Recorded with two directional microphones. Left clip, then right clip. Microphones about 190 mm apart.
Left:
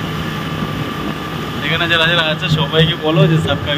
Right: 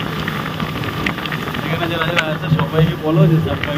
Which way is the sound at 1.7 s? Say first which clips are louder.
Left 7 dB; 65° left (ahead or behind).